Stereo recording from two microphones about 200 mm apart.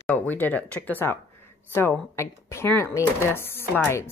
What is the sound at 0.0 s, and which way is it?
Speech, 10° left (ahead or behind).